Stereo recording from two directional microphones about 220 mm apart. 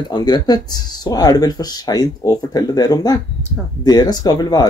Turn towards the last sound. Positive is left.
turn(degrees=15)  # may be behind; listen again after turning